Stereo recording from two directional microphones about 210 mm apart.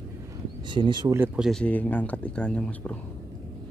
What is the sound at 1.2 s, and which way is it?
Speech, centre (ahead or behind).